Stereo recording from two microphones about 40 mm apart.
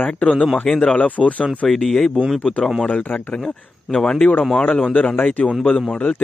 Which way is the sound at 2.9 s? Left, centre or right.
Left.